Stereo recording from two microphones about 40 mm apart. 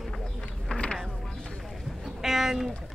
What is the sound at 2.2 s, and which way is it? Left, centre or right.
Speech, centre.